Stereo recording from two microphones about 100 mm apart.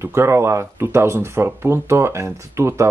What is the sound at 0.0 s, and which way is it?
Speech, 25° right (ahead or behind).